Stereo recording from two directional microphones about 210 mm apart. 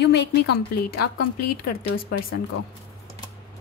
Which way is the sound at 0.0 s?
55° left (ahead or behind).